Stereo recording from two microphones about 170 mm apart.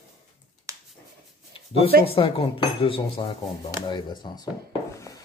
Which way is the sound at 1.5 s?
35° left (ahead or behind).